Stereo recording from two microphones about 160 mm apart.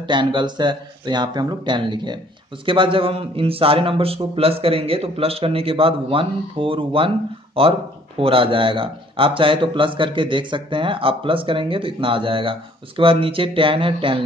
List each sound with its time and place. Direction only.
0.0 s a man's voice: 30° right (ahead or behind)